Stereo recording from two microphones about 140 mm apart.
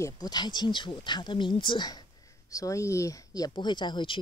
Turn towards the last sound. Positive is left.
turn(degrees=35)  # may be behind; listen again after turning